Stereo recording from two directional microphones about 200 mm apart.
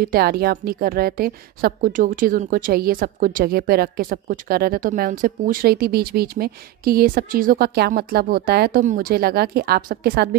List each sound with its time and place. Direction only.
0.0 s a woman's voice: 50° right (ahead or behind)